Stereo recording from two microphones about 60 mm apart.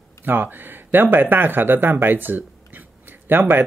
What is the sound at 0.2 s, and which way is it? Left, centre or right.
Speech, right.